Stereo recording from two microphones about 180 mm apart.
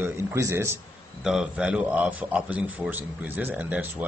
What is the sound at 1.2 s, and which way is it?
A man's voice, 5° right (ahead or behind).